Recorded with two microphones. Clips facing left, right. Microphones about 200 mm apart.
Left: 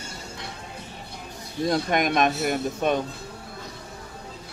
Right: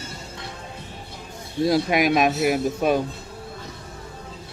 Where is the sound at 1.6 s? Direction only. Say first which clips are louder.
Right 4 dB; 5° right (ahead or behind).